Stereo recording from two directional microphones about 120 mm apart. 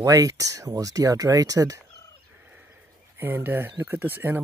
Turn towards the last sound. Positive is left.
turn(degrees=-15)  # may be behind; listen again after turning